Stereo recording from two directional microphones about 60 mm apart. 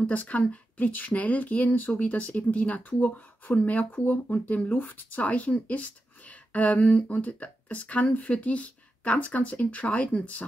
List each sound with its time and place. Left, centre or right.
0.0 s speech: left